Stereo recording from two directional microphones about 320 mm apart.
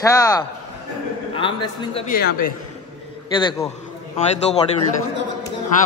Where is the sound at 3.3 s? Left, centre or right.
Centre.